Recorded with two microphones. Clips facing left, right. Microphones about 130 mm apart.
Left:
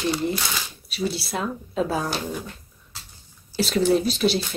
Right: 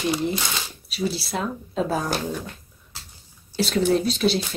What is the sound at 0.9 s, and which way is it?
Speech, centre (ahead or behind).